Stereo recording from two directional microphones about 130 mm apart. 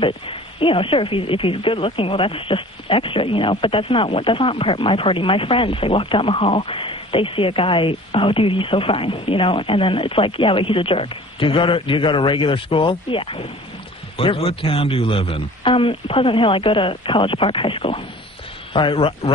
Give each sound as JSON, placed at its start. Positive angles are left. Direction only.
{"t": 0.0, "sound": "speech", "side_deg": 40}